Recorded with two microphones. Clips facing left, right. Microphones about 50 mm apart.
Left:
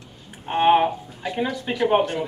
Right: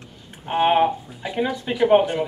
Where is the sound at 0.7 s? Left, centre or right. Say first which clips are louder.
Left 4 dB; centre.